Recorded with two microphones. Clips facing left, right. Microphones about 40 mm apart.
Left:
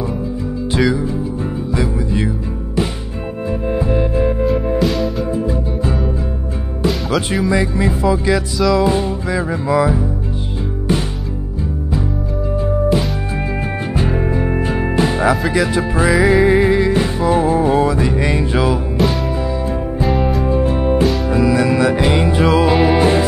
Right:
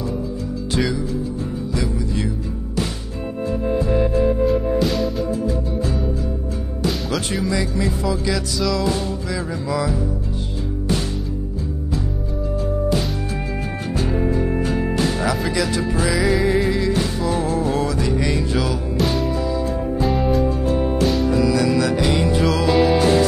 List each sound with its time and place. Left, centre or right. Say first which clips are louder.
0.7 s music: left 5 dB; left
4.5 s music: left 2 dB; centre
5.3 s music: left 3 dB; left
6.9 s music: left 6 dB; centre
7.4 s music: left 5 dB; left
13.9 s music: left 1 dB; left
19.0 s music: left 1 dB; centre
20.4 s music: left 4 dB; left